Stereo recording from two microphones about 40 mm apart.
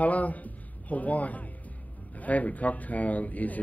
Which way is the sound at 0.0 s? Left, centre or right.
Left.